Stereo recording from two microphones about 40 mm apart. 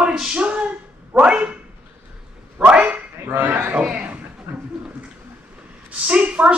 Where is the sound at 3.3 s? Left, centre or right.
Right.